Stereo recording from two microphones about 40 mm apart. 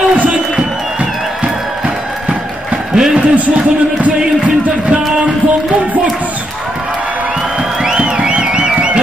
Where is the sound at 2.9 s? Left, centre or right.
Centre.